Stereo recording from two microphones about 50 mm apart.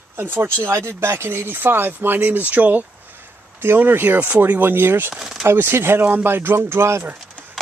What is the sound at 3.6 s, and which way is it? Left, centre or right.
Speech, right.